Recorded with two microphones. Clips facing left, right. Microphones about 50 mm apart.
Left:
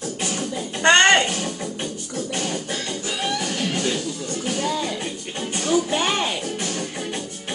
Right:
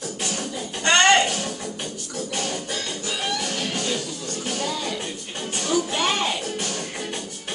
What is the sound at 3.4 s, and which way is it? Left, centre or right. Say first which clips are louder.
Music: left 3 dB; left.